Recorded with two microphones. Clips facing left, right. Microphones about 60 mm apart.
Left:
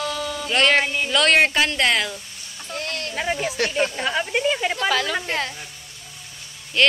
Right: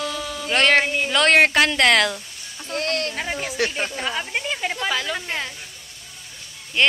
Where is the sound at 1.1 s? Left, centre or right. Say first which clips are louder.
Right 2 dB; right.